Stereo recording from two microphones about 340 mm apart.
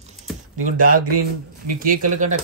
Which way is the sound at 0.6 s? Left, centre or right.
Right.